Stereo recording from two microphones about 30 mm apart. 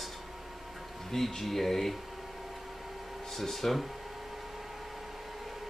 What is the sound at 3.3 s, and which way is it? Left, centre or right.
Speech, centre.